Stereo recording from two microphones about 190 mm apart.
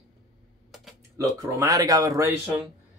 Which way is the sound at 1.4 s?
15° right (ahead or behind).